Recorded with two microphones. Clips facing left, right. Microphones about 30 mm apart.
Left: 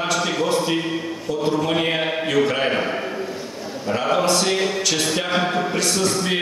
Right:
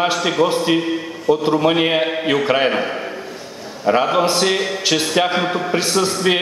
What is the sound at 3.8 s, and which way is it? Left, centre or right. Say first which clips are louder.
Speech: right 5 dB; right.